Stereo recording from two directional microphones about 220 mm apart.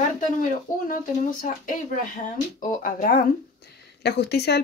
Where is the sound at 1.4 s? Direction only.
40° left (ahead or behind).